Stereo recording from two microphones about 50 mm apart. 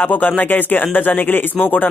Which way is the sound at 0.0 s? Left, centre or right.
Left.